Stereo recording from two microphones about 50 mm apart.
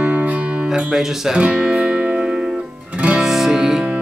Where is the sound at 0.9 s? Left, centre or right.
Centre.